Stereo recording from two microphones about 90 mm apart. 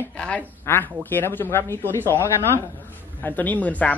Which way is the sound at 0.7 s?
25° left (ahead or behind).